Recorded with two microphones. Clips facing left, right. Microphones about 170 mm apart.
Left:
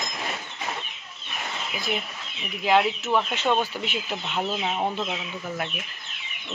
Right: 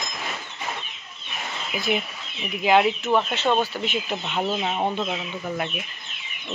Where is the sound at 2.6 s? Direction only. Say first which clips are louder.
Right 2 dB; 5° right (ahead or behind).